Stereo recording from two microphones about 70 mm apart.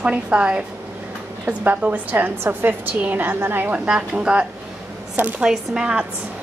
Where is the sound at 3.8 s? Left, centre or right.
Centre.